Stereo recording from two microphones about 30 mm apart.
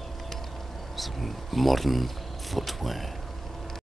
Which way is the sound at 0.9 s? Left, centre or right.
Centre.